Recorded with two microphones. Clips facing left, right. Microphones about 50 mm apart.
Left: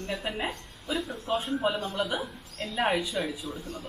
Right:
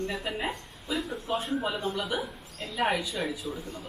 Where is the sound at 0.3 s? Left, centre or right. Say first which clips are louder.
Even; centre.